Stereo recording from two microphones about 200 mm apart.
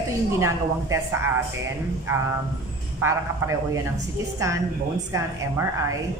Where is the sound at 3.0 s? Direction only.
15° right (ahead or behind).